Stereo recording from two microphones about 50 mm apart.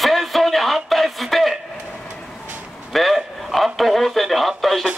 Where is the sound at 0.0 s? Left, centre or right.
Centre.